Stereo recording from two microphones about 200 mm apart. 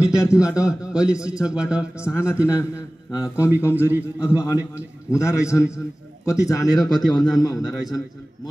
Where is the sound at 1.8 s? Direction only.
15° left (ahead or behind).